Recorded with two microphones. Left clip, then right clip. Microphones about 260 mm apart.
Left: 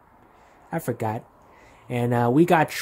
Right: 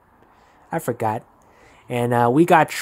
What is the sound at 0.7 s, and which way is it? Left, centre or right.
Speech, right.